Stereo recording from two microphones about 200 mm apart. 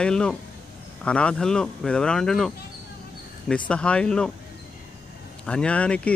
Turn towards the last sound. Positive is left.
turn(degrees=5)  # may be behind; listen again after turning